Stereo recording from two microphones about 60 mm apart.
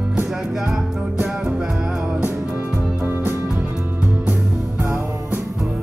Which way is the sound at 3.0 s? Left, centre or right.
Right.